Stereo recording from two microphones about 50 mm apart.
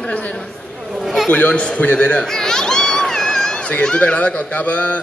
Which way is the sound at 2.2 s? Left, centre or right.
Centre.